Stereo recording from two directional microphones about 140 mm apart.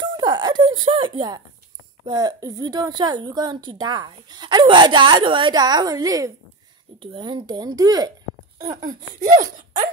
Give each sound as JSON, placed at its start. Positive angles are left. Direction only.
{"t": 0.0, "sound": "a woman's voice", "side_deg": -30}
{"t": 7.0, "sound": "speech", "side_deg": -35}
{"t": 8.8, "sound": "speech", "side_deg": -70}